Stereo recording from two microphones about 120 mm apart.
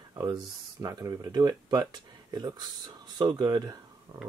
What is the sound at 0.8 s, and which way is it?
Speech, 30° right (ahead or behind).